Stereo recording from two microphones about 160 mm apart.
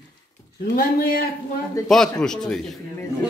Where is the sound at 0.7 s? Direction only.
70° left (ahead or behind).